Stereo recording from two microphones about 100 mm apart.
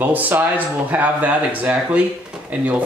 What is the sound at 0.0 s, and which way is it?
Speech, 15° right (ahead or behind).